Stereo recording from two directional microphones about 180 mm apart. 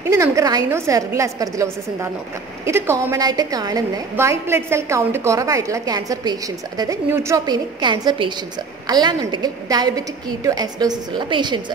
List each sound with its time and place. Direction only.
0.1 s a woman's voice: 15° right (ahead or behind)